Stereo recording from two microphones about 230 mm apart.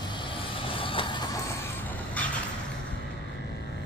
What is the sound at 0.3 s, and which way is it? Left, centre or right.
Vehicle, left.